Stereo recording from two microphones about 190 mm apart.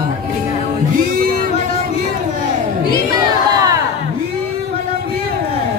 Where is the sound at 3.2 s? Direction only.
20° right (ahead or behind).